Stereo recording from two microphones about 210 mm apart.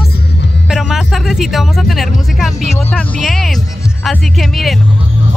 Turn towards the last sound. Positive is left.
turn(degrees=0)  # may be behind; listen again after turning